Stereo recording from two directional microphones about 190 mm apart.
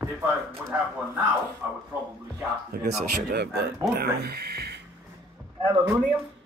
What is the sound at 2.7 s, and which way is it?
Speech, 50° right (ahead or behind).